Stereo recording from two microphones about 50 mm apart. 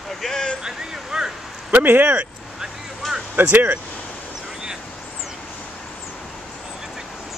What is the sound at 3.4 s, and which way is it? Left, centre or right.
Speech, right.